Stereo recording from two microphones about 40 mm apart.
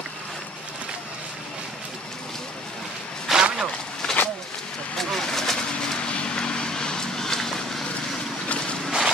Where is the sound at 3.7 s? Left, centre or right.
Centre.